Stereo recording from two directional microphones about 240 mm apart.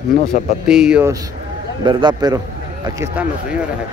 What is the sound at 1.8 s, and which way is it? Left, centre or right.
Speech, centre.